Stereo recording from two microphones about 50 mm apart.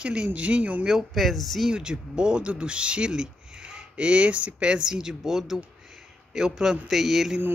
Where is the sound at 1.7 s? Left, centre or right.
Centre.